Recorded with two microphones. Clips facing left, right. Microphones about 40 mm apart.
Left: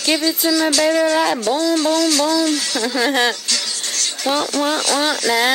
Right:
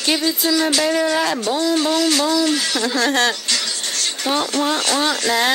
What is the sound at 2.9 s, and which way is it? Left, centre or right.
Speech, centre.